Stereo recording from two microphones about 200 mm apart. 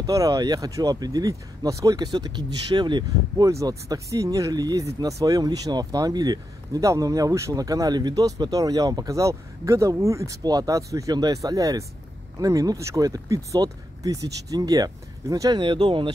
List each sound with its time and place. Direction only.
0.0 s speech: 15° right (ahead or behind)